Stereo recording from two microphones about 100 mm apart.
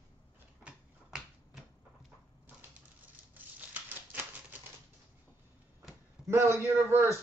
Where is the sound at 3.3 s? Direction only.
15° right (ahead or behind).